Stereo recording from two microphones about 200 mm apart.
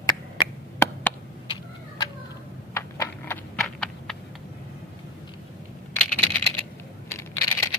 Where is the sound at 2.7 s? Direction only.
10° left (ahead or behind).